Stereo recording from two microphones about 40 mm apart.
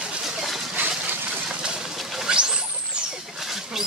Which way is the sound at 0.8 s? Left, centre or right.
Right.